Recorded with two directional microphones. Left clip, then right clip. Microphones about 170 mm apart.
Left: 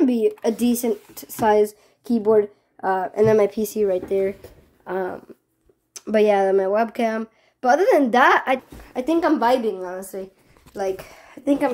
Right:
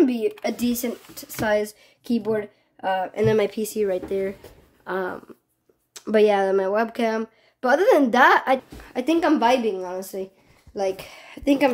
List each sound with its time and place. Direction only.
0.0 s a woman's voice: 15° left (ahead or behind); by 3.5 s centre (ahead or behind)
3.5 s a woman's voice: 10° left (ahead or behind)
7.6 s a woman's voice: 5° right (ahead or behind)
10.1 s a sound: 15° right (ahead or behind)
11.4 s a woman's voice: 15° right (ahead or behind)